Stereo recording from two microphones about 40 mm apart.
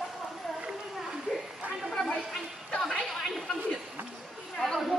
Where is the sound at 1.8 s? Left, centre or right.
Centre.